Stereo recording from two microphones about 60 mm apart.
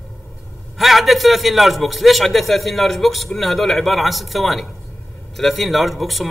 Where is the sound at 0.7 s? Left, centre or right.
Centre.